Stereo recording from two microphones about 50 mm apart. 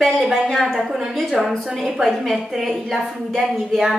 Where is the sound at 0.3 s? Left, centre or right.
Centre.